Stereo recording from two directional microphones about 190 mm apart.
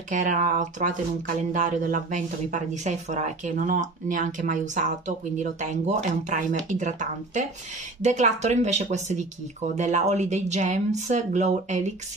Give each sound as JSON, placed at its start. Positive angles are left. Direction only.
{"t": 0.1, "sound": "speech", "side_deg": -40}